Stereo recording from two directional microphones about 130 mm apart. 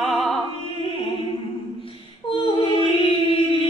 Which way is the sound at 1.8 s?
40° left (ahead or behind).